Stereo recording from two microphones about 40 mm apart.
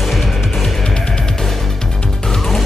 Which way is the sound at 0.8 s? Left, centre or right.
Centre.